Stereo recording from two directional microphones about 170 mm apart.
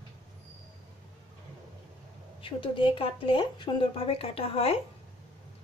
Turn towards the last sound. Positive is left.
turn(degrees=35)  # may be behind; listen again after turning